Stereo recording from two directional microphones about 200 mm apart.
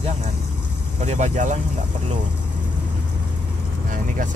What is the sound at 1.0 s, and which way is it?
Speech, 35° right (ahead or behind).